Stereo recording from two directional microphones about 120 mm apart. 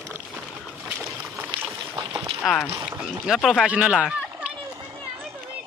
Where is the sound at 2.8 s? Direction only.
10° right (ahead or behind).